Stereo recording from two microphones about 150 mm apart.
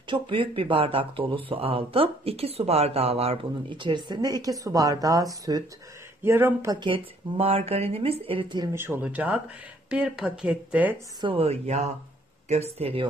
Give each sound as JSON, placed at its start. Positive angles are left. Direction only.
{"t": 0.1, "sound": "speech", "side_deg": -35}
{"t": 6.8, "sound": "speech", "side_deg": -40}
{"t": 8.7, "sound": "a woman's voice", "side_deg": -15}
{"t": 11.1, "sound": "speech", "side_deg": -35}